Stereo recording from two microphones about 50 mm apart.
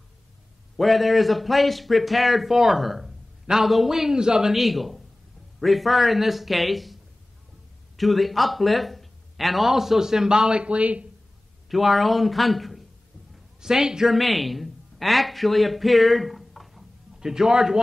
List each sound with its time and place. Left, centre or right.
0.7 s speech: centre
8.0 s speech: centre; by 11.1 s right
11.7 s speech: centre
13.6 s speech: centre